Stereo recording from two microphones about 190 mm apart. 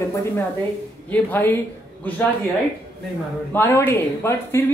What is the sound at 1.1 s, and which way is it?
Speech, 10° left (ahead or behind).